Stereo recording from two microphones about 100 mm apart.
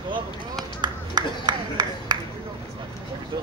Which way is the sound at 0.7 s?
45° right (ahead or behind).